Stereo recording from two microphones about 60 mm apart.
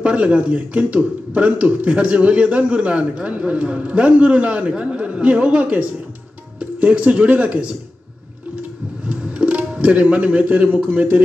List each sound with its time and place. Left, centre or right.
0.0 s a man's voice: right
9.0 s music: centre
10.9 s a man's voice: right